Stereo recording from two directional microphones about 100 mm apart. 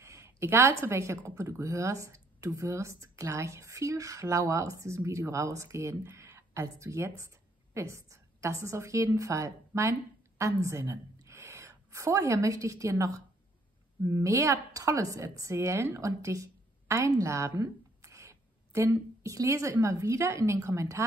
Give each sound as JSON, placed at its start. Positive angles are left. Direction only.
{"t": 0.0, "sound": "a woman's voice", "side_deg": -30}